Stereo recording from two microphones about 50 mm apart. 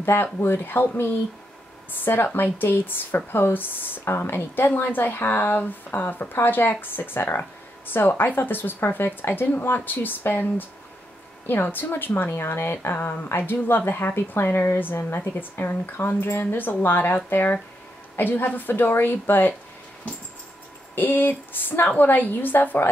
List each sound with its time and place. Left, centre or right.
0.0 s a woman's voice: left
1.9 s a woman's voice: left
11.4 s a woman's voice: left
20.9 s a woman's voice: left